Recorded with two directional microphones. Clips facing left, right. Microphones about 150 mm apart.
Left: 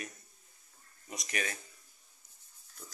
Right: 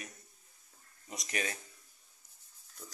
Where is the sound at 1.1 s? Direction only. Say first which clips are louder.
Even; 30° right (ahead or behind).